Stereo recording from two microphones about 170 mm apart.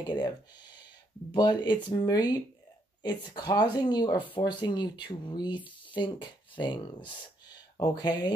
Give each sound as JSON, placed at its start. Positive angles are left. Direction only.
{"t": 0.0, "sound": "speech", "side_deg": 25}
{"t": 1.3, "sound": "speech", "side_deg": 25}